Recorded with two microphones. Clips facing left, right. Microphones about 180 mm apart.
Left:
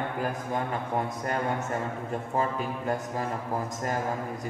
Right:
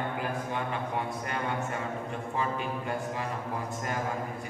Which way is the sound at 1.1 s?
40° left (ahead or behind).